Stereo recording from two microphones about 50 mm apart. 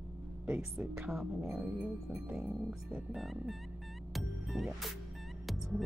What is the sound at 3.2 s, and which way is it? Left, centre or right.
Music, centre.